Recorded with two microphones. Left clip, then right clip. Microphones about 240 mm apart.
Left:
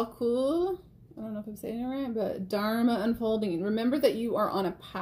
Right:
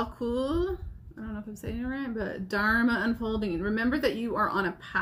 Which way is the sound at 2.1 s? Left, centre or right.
Centre.